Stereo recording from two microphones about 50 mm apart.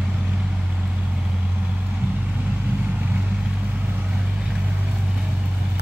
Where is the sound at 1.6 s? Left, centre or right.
Right.